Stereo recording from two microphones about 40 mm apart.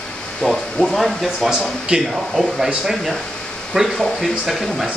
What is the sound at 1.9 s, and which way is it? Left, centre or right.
Speech, right.